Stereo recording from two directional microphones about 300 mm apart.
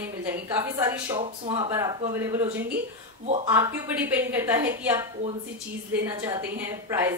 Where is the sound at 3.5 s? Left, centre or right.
Centre.